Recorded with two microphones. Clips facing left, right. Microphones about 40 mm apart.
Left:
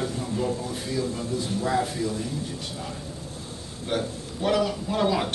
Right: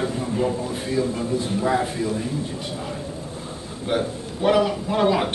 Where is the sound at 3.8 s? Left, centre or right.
Centre.